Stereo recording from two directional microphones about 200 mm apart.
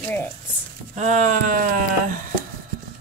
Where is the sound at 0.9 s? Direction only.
35° right (ahead or behind).